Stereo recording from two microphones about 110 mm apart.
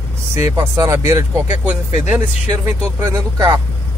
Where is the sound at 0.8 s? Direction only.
25° right (ahead or behind).